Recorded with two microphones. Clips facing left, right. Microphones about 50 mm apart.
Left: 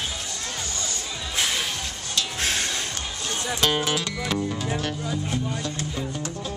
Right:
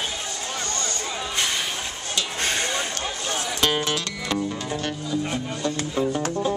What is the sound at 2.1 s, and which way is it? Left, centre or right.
Music, centre.